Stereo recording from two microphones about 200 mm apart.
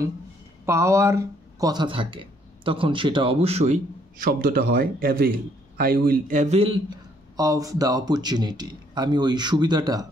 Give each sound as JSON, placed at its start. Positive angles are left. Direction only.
{"t": 0.7, "sound": "speech", "side_deg": -15}
{"t": 7.3, "sound": "speech", "side_deg": -15}